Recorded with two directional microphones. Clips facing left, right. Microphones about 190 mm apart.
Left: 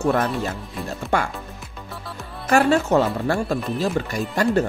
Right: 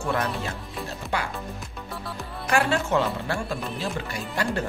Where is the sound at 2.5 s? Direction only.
40° left (ahead or behind).